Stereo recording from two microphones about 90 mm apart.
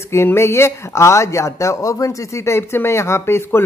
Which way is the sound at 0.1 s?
30° left (ahead or behind).